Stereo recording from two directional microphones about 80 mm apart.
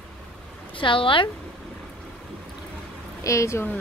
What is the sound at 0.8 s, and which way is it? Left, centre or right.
Speech, left.